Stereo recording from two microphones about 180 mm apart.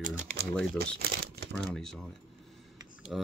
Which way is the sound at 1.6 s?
5° left (ahead or behind).